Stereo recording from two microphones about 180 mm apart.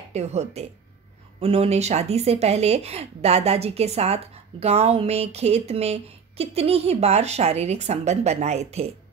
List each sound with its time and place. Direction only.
0.1 s speech: 35° right (ahead or behind)